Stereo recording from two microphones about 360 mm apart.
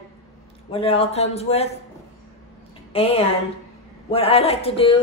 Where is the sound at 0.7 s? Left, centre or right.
Centre.